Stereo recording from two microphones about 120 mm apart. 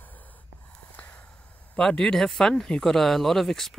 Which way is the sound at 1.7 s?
5° left (ahead or behind).